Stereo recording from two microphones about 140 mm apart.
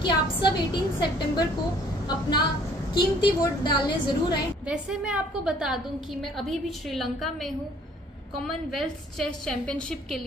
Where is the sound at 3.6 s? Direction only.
35° left (ahead or behind).